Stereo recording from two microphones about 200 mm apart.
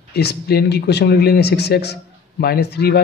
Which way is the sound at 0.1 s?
55° left (ahead or behind).